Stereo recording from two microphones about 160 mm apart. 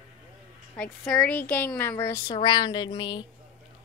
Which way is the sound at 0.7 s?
5° left (ahead or behind).